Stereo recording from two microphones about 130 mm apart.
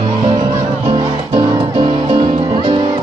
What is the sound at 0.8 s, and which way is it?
Music, 35° right (ahead or behind).